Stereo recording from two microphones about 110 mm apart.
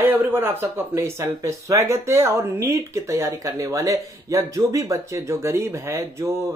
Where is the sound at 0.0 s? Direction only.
20° right (ahead or behind).